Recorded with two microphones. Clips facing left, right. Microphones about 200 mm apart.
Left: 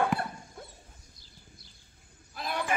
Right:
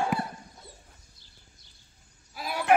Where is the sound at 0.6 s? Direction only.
55° left (ahead or behind).